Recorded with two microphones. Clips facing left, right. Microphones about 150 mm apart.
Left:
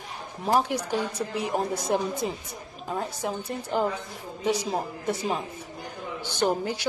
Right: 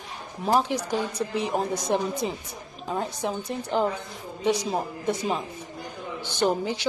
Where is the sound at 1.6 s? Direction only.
5° left (ahead or behind).